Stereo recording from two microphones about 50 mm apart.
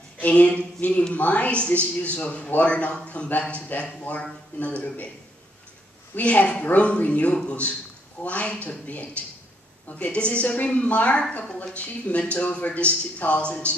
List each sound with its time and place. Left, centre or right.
0.2 s a man's voice: left
6.1 s a man's voice: left